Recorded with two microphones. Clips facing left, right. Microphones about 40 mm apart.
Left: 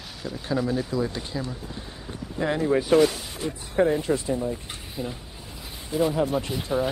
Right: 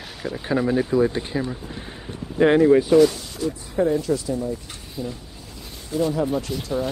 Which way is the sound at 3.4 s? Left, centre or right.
Left.